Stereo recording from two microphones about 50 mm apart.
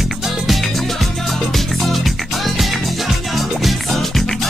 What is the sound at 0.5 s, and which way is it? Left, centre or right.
Music, centre.